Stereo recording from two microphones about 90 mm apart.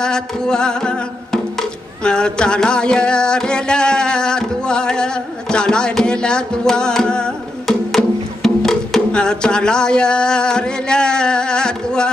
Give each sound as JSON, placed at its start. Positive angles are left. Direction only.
{"t": 0.0, "sound": "music", "side_deg": 10}